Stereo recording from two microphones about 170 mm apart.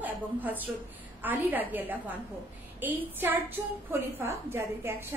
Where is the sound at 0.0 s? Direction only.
10° right (ahead or behind).